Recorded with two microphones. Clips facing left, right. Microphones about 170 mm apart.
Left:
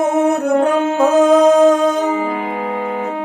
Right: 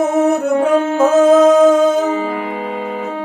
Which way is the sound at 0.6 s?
Centre (ahead or behind).